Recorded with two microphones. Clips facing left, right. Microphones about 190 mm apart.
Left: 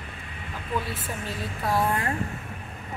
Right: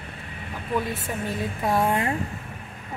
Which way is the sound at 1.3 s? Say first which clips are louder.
Right 3 dB; 20° right (ahead or behind).